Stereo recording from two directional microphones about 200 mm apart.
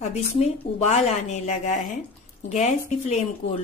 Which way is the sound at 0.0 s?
35° left (ahead or behind).